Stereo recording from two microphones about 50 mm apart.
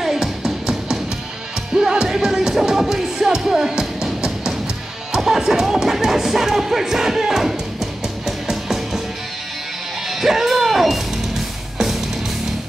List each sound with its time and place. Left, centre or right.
0.0 s music: centre
10.0 s music: centre